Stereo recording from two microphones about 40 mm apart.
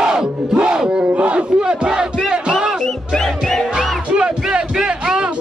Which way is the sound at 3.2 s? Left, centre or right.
Centre.